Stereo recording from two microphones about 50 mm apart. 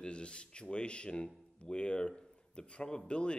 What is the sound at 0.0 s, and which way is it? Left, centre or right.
Speech, centre.